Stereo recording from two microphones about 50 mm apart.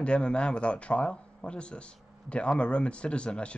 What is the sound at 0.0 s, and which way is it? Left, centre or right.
A man's voice, left.